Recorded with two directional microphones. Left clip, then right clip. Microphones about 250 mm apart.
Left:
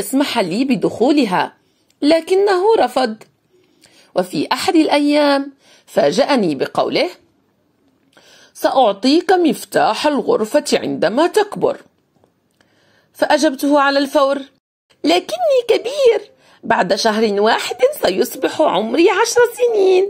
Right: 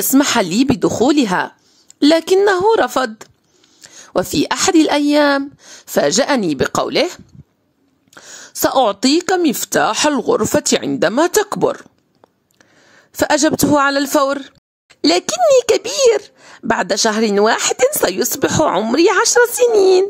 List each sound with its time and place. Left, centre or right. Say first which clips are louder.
0.0 s speech: right 3 dB; right
13.1 s a woman's voice: even; right